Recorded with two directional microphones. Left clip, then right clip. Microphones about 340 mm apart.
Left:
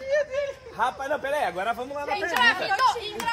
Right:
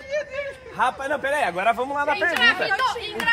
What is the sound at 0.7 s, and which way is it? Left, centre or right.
A man's voice, right.